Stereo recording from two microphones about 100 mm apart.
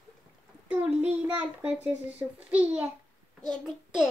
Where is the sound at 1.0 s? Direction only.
15° right (ahead or behind).